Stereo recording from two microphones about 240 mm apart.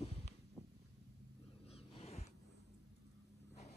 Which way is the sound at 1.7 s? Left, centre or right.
Left.